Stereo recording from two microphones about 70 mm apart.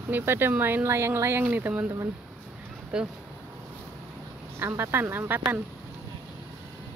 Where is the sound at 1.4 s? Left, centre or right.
Right.